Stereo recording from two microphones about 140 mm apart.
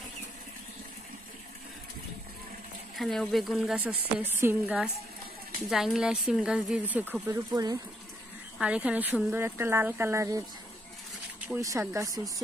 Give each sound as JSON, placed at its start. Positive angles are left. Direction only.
{"t": 3.0, "sound": "speech", "side_deg": 5}
{"t": 5.7, "sound": "speech", "side_deg": 0}
{"t": 7.5, "sound": "speech", "side_deg": -25}
{"t": 8.5, "sound": "speech", "side_deg": -10}
{"t": 11.9, "sound": "speech", "side_deg": -25}